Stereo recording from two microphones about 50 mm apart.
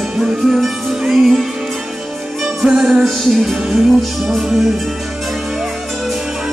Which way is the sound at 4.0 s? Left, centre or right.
Centre.